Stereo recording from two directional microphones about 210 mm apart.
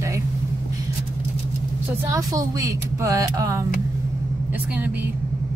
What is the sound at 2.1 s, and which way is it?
Speech, 15° right (ahead or behind).